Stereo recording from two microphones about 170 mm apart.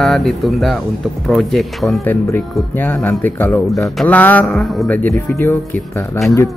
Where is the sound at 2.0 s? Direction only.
10° left (ahead or behind).